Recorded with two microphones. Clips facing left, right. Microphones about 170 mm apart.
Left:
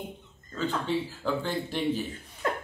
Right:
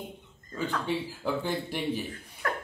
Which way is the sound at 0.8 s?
15° right (ahead or behind).